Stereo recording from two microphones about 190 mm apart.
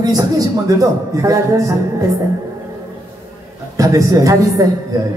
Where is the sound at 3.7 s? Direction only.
15° right (ahead or behind).